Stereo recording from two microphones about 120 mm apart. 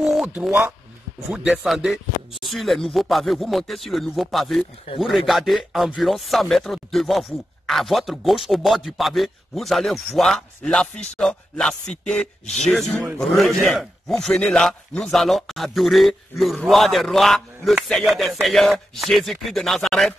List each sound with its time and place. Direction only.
0.0 s a sound: 5° right (ahead or behind)
0.5 s speech: 20° right (ahead or behind)
1.3 s speech: 5° right (ahead or behind)
12.2 s speech: 70° left (ahead or behind)
12.6 s speech: centre (ahead or behind)